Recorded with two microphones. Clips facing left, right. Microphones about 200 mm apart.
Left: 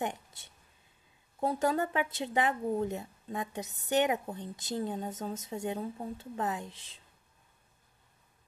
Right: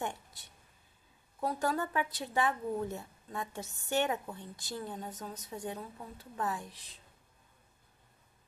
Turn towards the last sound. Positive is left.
turn(degrees=25)  # may be behind; listen again after turning